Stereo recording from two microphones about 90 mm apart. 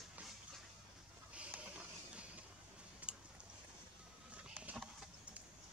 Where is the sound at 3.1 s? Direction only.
10° right (ahead or behind).